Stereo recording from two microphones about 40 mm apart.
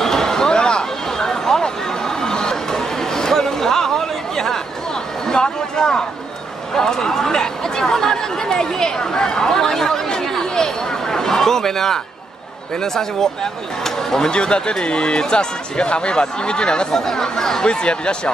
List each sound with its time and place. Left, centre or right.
0.0 s a sound: centre
6.7 s chatter: centre
12.8 s speech: centre
14.3 s speech: left
16.9 s speech: centre
17.6 s speech: left